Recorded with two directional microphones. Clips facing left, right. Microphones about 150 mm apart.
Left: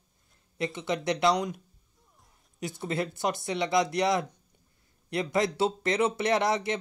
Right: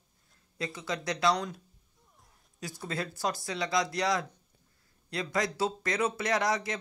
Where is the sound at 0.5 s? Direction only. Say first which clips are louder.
Left 5 dB; 25° left (ahead or behind).